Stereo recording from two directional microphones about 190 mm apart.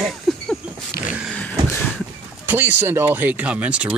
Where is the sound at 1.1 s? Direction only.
5° right (ahead or behind).